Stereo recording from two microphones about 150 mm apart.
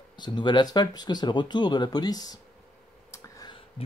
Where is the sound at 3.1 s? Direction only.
25° left (ahead or behind).